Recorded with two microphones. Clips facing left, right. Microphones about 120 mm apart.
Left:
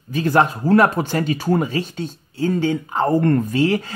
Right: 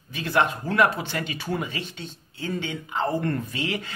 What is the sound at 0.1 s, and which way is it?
Speech, 40° left (ahead or behind).